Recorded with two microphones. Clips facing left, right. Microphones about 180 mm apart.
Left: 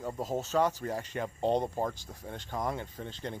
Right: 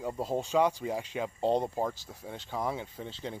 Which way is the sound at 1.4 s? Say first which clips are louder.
Right 1 dB; 15° left (ahead or behind).